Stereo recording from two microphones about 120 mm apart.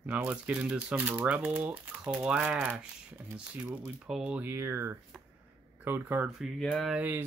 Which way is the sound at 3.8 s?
5° right (ahead or behind).